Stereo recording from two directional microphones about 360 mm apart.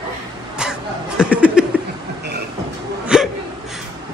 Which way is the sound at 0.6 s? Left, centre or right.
Centre.